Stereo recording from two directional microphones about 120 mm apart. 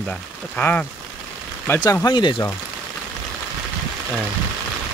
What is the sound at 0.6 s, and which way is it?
Speech, 10° left (ahead or behind).